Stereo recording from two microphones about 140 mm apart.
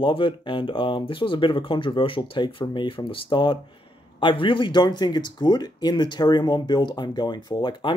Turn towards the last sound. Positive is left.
turn(degrees=35)  # may be behind; listen again after turning